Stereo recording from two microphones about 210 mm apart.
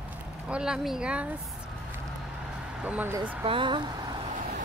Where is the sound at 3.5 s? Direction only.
25° right (ahead or behind).